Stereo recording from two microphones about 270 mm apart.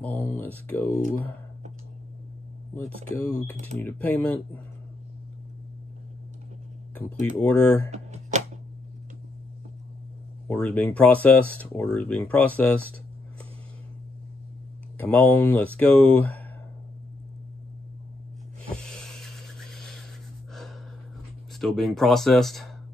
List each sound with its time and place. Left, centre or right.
0.0 s speech: centre
2.7 s speech: centre
7.1 s speech: centre
7.9 s a sound: right
10.5 s speech: centre
15.0 s speech: centre
18.8 s music: centre
21.5 s speech: centre